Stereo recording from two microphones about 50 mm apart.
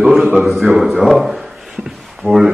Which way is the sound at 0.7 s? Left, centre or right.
Centre.